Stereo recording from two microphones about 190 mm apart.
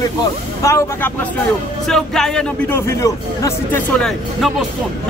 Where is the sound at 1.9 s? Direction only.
5° left (ahead or behind).